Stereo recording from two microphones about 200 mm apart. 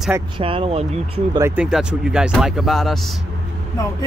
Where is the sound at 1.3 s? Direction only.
15° right (ahead or behind).